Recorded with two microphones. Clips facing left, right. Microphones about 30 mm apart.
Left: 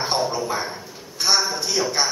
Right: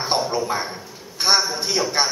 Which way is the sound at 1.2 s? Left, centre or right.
Right.